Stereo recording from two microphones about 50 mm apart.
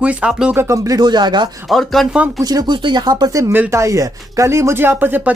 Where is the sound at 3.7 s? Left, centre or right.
Right.